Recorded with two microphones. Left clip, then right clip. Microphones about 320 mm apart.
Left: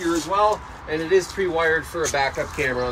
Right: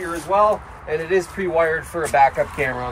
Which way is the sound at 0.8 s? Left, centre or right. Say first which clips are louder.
Even; right.